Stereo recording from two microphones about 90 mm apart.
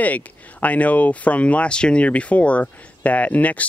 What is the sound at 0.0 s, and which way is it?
Speech, 15° left (ahead or behind).